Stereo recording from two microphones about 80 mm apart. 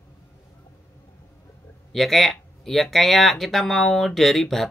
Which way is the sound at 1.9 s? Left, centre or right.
Centre.